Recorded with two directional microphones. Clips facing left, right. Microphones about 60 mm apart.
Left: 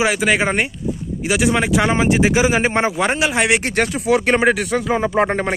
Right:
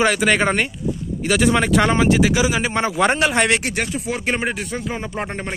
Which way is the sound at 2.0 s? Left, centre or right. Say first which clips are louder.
Left 1 dB; left.